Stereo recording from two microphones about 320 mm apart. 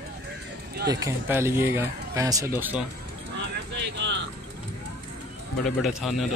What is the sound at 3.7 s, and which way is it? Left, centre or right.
Vehicle, right.